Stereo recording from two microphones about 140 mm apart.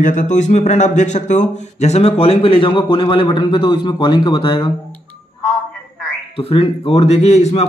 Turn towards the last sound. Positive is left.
turn(degrees=55)  # may be behind; listen again after turning